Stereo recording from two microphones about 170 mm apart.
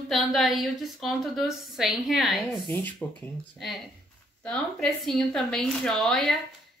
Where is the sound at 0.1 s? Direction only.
Centre (ahead or behind).